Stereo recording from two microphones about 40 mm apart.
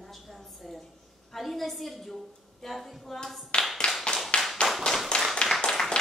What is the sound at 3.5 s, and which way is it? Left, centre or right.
Clapping, centre.